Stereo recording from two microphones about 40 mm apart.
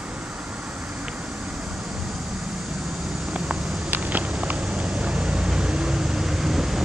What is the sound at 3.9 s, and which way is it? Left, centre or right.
Vehicle, right.